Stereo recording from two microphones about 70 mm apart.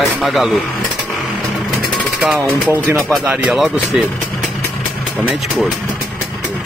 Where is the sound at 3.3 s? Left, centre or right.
Centre.